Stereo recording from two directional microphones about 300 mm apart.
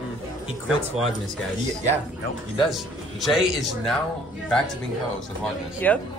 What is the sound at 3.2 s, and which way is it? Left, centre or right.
Speech, centre.